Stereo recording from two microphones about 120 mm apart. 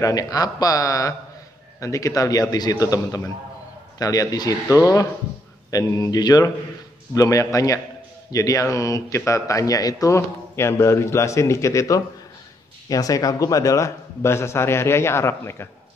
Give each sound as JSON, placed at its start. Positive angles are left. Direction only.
{"t": 0.0, "sound": "a man's voice", "side_deg": 30}